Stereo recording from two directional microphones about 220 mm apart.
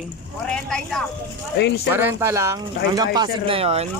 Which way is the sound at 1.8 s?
10° right (ahead or behind).